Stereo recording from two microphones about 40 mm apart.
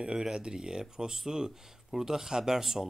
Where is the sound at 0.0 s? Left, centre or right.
Centre.